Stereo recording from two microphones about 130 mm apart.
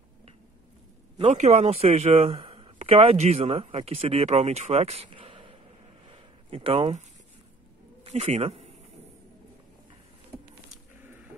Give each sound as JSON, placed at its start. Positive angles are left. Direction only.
{"t": 1.3, "sound": "speech", "side_deg": -55}
{"t": 6.5, "sound": "speech", "side_deg": -45}
{"t": 8.0, "sound": "speech", "side_deg": -55}